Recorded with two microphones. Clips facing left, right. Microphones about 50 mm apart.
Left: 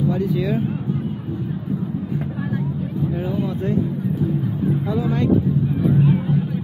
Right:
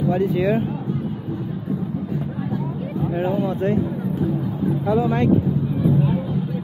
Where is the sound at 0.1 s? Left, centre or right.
Right.